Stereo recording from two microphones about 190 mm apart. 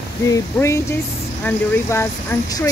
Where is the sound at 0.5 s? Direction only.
15° left (ahead or behind).